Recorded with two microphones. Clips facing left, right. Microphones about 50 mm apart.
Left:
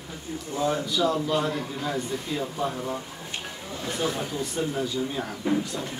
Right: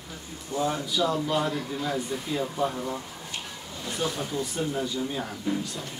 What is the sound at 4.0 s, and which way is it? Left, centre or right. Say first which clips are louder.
Speech: left 1 dB; centre.